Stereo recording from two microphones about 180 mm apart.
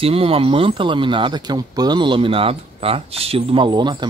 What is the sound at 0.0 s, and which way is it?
Speech, 30° right (ahead or behind).